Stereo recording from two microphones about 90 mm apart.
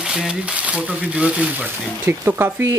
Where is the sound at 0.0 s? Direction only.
5° right (ahead or behind).